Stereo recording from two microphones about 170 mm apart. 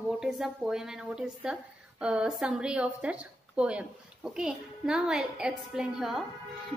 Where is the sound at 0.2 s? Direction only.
5° right (ahead or behind).